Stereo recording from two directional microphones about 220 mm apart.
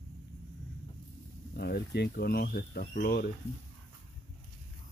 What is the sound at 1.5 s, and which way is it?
Speech, 45° left (ahead or behind).